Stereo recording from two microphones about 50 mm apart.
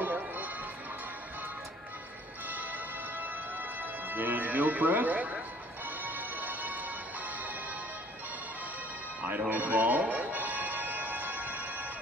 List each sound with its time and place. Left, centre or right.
0.0 s music: right
2.4 s music: right
9.5 s music: right